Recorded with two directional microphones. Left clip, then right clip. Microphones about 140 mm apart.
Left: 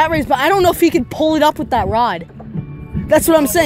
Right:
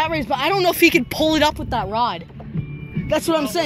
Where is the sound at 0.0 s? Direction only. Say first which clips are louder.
Left 6 dB; 50° left (ahead or behind).